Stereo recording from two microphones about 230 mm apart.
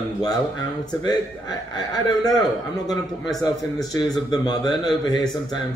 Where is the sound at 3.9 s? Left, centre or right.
Centre.